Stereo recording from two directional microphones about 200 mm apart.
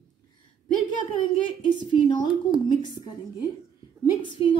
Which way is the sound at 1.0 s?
25° left (ahead or behind).